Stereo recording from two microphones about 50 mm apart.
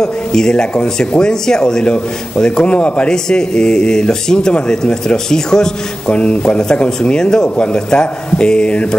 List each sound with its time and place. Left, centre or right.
0.0 s speech: centre